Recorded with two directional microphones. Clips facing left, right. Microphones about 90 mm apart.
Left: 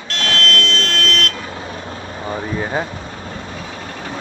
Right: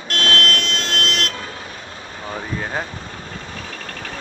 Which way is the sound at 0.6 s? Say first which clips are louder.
Left 4 dB; 10° right (ahead or behind).